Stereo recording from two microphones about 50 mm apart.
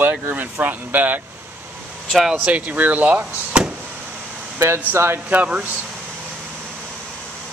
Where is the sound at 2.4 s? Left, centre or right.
Right.